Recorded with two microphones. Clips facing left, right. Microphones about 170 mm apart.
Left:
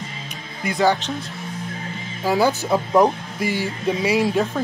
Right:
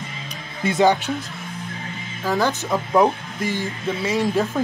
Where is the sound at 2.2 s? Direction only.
10° left (ahead or behind).